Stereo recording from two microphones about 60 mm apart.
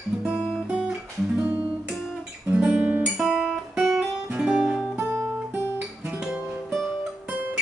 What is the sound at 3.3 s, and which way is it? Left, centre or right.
Guitar, centre.